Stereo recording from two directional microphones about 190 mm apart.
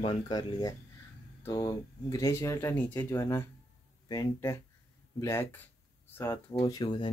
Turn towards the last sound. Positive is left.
turn(degrees=25)  # may be behind; listen again after turning